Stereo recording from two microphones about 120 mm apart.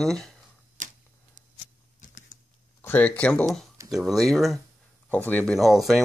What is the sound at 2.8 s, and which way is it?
Speech, 15° left (ahead or behind).